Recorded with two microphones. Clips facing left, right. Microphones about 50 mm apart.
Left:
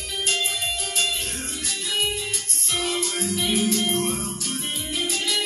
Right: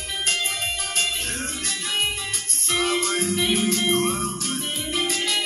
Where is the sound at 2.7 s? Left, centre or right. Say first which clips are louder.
Right 4 dB; right.